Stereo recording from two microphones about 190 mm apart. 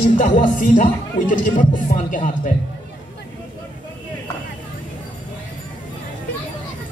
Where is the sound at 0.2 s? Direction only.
45° left (ahead or behind).